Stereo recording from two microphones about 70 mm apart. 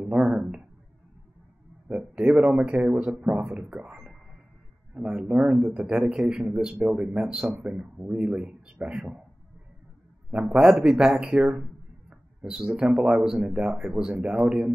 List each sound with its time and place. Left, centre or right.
0.0 s a sound: centre
1.9 s speech: centre
10.3 s speech: centre